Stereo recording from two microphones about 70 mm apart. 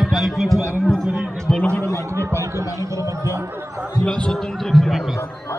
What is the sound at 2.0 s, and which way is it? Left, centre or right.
Speech, right.